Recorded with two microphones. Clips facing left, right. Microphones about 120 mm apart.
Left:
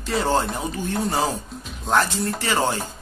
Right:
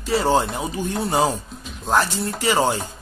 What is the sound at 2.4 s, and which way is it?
Speech, 15° right (ahead or behind).